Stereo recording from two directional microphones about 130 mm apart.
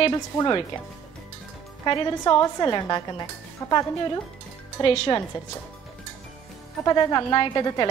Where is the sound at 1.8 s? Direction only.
35° left (ahead or behind).